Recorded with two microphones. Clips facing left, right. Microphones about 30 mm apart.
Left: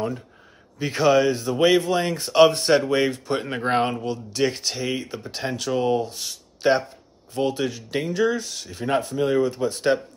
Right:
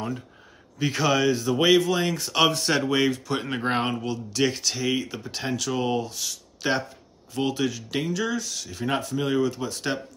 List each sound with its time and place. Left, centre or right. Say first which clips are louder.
0.8 s speech: left 4 dB; centre
3.3 s speech: left 3 dB; centre
4.1 s speech: left 1 dB; centre
8.8 s speech: left 4 dB; centre